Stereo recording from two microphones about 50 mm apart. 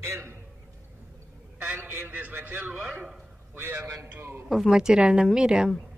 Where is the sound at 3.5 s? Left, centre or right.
Right.